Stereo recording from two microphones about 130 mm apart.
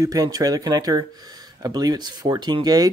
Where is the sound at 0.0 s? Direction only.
25° right (ahead or behind).